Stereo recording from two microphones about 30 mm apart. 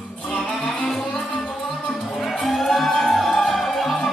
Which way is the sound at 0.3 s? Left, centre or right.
Left.